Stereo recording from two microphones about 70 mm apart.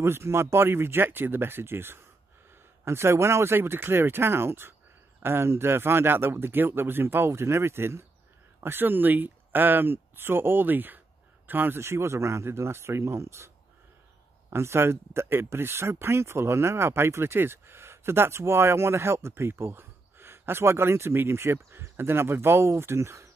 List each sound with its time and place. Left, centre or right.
0.0 s speech: right
14.5 s speech: right